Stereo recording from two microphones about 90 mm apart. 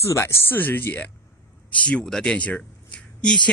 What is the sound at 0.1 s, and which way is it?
Speech, 25° left (ahead or behind).